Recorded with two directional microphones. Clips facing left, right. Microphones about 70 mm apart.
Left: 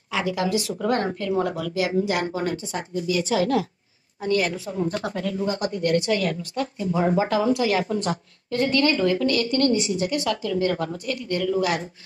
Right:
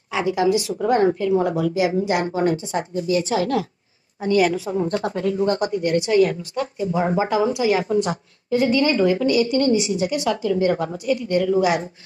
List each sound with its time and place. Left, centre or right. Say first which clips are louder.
0.1 s a woman's voice: right 5 dB; right
4.3 s a woman's voice: right 5 dB; centre
5.0 s a woman's voice: right 5 dB; right
5.8 s a woman's voice: right 5 dB; centre